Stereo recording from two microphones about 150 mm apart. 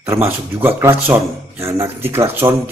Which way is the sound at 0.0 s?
15° right (ahead or behind).